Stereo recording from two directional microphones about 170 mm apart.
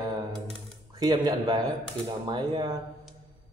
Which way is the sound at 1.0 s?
25° right (ahead or behind).